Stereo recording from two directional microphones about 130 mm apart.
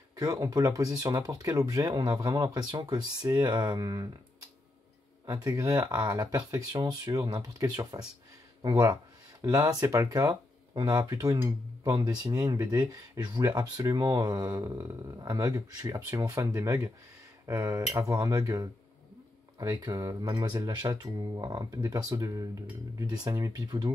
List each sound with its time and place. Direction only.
0.1 s speech: 30° right (ahead or behind)
5.2 s speech: 25° right (ahead or behind)